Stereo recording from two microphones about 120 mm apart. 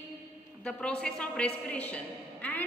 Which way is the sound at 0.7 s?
10° left (ahead or behind).